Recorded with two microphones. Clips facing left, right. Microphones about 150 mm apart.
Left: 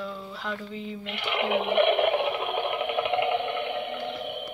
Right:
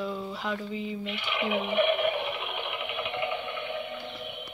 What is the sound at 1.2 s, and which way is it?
Speech, 75° left (ahead or behind).